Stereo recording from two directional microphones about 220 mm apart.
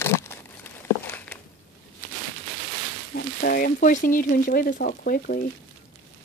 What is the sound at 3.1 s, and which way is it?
Speech, 45° left (ahead or behind).